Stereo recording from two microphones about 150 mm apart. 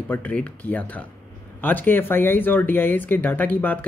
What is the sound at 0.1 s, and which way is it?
Speech, 10° left (ahead or behind).